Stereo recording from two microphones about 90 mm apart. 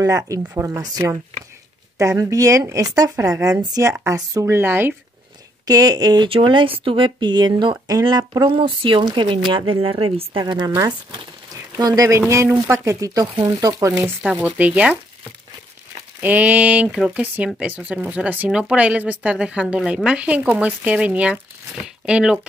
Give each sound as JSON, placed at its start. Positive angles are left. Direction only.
{"t": 0.0, "sound": "speech", "side_deg": -40}
{"t": 4.6, "sound": "speech", "side_deg": -25}
{"t": 5.7, "sound": "speech", "side_deg": -45}
{"t": 6.2, "sound": "speech", "side_deg": -75}
{"t": 8.5, "sound": "speech", "side_deg": -75}
{"t": 9.7, "sound": "speech", "side_deg": -85}
{"t": 10.4, "sound": "speech", "side_deg": -60}
{"t": 11.8, "sound": "speech", "side_deg": -40}
{"t": 12.2, "sound": "speech", "side_deg": -30}
{"t": 14.2, "sound": "speech", "side_deg": -15}
{"t": 16.2, "sound": "speech", "side_deg": -20}
{"t": 16.9, "sound": "speech", "side_deg": -5}
{"t": 17.6, "sound": "speech", "side_deg": -15}